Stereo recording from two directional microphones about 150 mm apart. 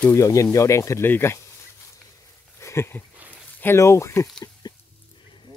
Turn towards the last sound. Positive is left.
turn(degrees=30)  # may be behind; listen again after turning